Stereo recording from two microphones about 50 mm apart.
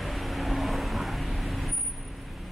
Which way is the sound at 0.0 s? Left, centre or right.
Centre.